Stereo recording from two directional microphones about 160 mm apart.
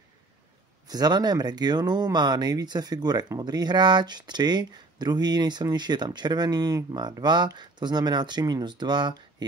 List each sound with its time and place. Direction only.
0.8 s speech: 25° right (ahead or behind)